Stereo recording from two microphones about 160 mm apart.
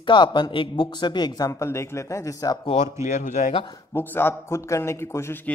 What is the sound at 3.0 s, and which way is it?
Speech, 50° left (ahead or behind).